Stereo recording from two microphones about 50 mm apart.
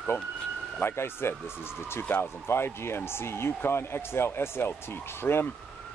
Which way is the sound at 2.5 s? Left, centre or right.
Left.